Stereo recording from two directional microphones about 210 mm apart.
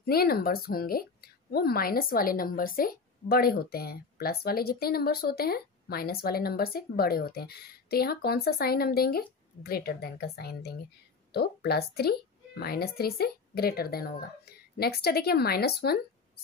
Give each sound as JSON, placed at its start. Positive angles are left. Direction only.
{"t": 0.0, "sound": "a woman's voice", "side_deg": 45}